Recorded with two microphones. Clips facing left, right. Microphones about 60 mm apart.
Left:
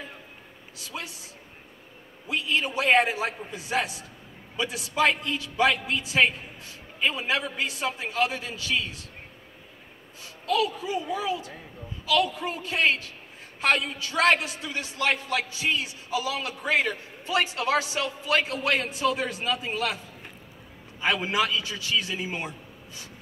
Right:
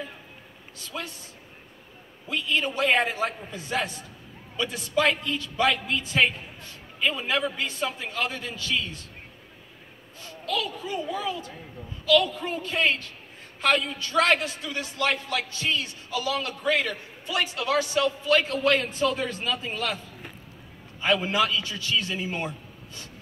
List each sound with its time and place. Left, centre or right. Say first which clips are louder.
0.9 s a man's voice: right 2 dB; centre
2.2 s a man's voice: even; centre
10.5 s a man's voice: left 4 dB; centre; by 15.4 s left
15.5 s a man's voice: left 1 dB; centre
21.0 s a man's voice: right 2 dB; centre